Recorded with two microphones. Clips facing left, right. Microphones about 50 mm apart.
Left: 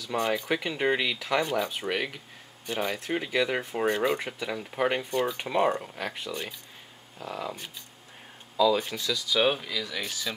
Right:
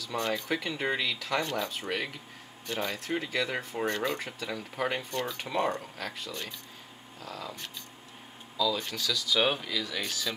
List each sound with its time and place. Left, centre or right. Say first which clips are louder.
0.1 s speech: left 4 dB; centre
1.4 s speech: left 4 dB; centre; by 7.5 s left
8.7 s speech: left 4 dB; centre
9.3 s speech: left 2 dB; centre